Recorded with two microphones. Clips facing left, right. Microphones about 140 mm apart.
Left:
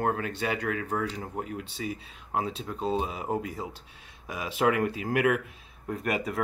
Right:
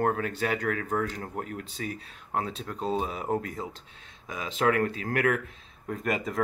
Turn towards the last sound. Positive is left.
turn(degrees=5)  # may be behind; listen again after turning